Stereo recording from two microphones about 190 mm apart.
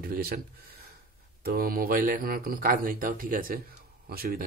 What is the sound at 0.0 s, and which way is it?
Speech, 50° right (ahead or behind).